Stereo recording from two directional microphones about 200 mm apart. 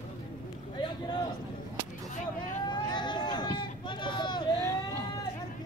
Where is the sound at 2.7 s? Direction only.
20° left (ahead or behind).